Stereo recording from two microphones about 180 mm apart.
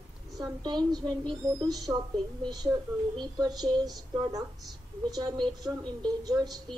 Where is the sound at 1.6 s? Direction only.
20° right (ahead or behind).